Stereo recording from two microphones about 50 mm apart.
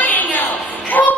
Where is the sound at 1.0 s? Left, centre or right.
Left.